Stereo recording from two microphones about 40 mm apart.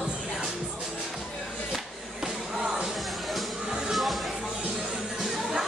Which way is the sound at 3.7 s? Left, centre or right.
Centre.